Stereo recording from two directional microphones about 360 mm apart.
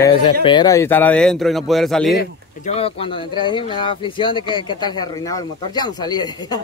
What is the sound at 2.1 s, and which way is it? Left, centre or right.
Speech, centre.